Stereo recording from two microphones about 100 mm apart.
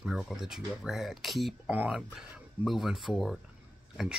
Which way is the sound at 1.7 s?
15° right (ahead or behind).